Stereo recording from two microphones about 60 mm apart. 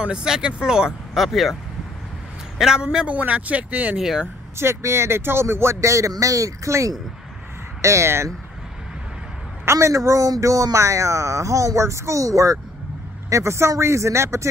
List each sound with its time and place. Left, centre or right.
0.0 s speech: centre
2.6 s speech: centre
3.1 s speech: right
4.6 s a man's voice: right
7.8 s a man's voice: right
9.7 s speech: right
13.3 s a man's voice: right